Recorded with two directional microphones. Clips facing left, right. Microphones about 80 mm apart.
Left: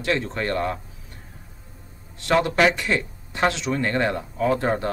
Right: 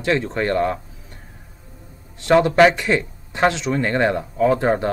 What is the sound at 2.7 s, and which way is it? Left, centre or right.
Speech, centre.